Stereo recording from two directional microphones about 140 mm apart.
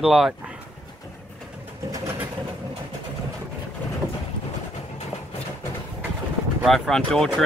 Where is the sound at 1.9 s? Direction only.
20° right (ahead or behind).